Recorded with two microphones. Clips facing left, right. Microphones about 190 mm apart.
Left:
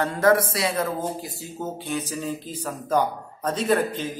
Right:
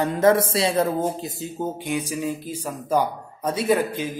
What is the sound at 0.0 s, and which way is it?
Speech, 20° right (ahead or behind).